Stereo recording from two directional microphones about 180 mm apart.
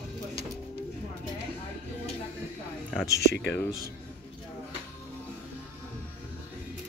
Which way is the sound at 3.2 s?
70° left (ahead or behind).